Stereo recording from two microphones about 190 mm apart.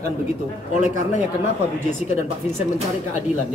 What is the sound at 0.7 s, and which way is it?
Speech, 40° left (ahead or behind).